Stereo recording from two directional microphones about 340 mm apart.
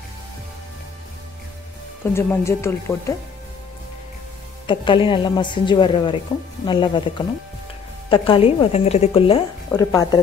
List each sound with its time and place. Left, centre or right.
2.1 s a woman's voice: centre
4.6 s a woman's voice: centre